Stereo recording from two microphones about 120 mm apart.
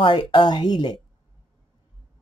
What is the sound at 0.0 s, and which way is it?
Speech, 45° left (ahead or behind).